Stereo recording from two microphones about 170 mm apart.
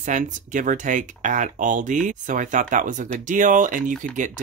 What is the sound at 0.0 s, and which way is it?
Speech, 50° right (ahead or behind).